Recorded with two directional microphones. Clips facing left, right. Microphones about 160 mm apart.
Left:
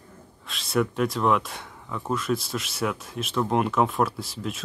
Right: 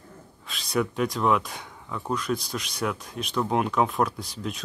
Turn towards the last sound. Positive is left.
turn(degrees=0)  # may be behind; listen again after turning